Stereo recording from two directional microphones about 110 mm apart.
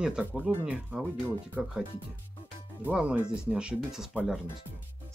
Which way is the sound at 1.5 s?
5° right (ahead or behind).